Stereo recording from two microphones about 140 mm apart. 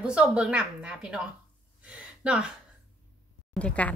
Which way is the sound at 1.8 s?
10° right (ahead or behind).